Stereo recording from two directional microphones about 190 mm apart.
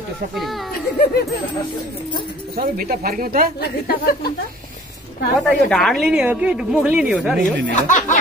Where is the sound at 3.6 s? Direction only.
55° left (ahead or behind).